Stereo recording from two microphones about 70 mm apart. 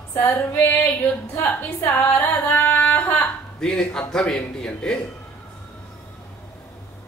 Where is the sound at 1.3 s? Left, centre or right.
Left.